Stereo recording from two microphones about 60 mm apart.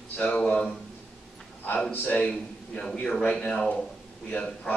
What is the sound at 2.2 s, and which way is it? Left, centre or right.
A man's voice, centre.